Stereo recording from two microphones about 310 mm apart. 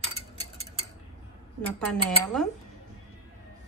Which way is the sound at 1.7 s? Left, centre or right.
Centre.